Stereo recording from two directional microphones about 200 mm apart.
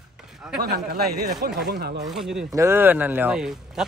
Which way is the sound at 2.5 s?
15° right (ahead or behind).